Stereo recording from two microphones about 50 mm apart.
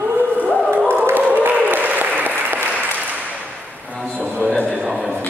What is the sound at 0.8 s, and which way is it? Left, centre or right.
Applause, right.